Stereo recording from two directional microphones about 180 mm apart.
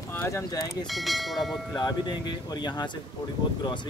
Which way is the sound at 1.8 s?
25° left (ahead or behind).